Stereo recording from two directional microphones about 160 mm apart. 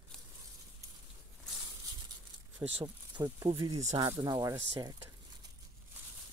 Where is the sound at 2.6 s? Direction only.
40° right (ahead or behind).